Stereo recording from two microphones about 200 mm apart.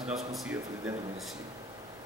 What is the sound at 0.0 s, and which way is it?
Speech, centre (ahead or behind).